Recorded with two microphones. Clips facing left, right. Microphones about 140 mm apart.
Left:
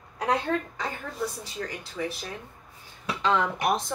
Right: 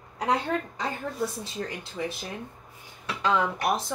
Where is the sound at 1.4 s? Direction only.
20° right (ahead or behind).